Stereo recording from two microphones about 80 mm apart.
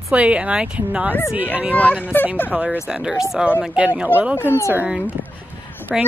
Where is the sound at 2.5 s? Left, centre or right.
Centre.